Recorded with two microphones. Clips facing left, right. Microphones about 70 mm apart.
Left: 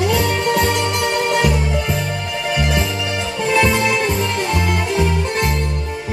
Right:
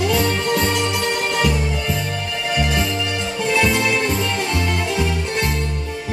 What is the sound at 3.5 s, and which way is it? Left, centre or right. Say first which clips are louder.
Music: left 2 dB; centre.